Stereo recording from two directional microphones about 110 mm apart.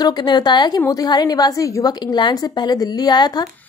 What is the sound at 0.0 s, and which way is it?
A woman's voice, 40° left (ahead or behind).